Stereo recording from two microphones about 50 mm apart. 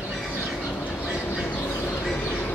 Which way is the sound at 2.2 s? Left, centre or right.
Left.